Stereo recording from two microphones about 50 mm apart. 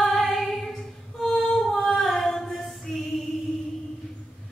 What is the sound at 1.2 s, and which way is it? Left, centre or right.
Female singing, centre.